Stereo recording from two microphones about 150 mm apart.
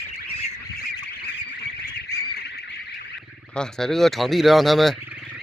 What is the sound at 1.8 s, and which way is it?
Duck, 90° left.